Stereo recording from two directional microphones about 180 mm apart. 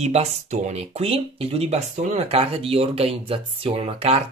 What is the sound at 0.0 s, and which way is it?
Speech, 35° right (ahead or behind).